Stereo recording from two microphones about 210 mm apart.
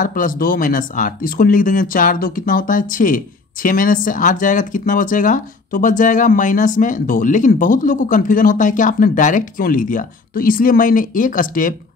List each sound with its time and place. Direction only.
0.0 s speech: 40° left (ahead or behind)